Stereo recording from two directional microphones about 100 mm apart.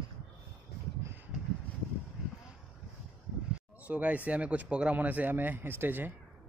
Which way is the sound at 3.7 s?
15° right (ahead or behind).